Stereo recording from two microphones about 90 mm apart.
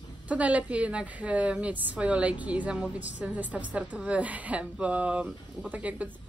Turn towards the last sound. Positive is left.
turn(degrees=-15)  # may be behind; listen again after turning